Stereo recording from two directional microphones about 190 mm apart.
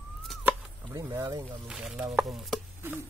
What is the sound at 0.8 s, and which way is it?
Speech, 15° right (ahead or behind).